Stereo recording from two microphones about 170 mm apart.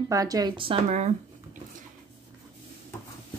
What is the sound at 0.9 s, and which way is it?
Speech, 40° right (ahead or behind).